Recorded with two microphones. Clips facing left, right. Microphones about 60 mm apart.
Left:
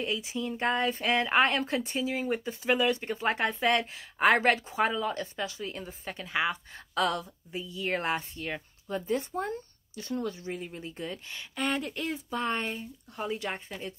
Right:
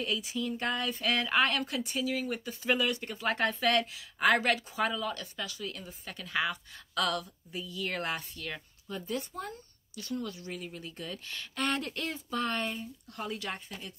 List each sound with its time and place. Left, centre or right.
0.0 s speech: left
11.5 s speech: centre; by 13.9 s left